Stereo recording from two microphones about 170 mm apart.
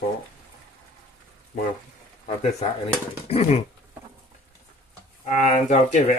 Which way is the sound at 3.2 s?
40° left (ahead or behind).